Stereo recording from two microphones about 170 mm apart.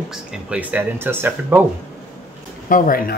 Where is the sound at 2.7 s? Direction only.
55° left (ahead or behind).